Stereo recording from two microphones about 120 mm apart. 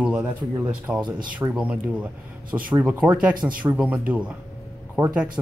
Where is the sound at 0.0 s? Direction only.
10° right (ahead or behind).